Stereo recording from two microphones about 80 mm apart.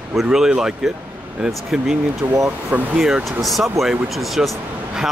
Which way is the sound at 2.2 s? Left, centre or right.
Right.